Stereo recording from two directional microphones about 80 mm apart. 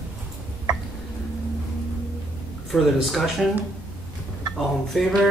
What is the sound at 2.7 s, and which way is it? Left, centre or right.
Speech, centre.